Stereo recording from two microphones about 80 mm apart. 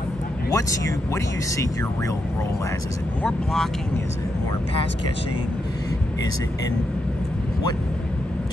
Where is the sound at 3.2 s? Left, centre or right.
Centre.